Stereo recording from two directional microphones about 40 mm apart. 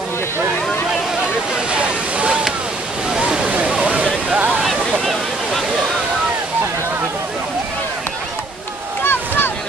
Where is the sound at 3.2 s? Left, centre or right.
Right.